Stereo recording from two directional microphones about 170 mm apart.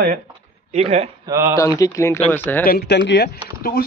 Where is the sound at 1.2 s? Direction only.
20° right (ahead or behind).